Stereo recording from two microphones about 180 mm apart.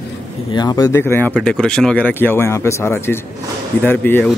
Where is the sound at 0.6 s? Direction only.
20° left (ahead or behind).